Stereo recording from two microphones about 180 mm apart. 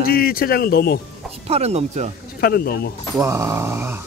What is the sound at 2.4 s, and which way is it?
Speech, 60° left (ahead or behind).